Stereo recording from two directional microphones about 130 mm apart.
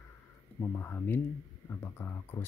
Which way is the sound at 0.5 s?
20° left (ahead or behind).